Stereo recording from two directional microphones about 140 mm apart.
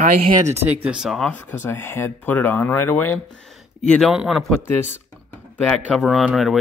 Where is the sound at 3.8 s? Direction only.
Centre (ahead or behind).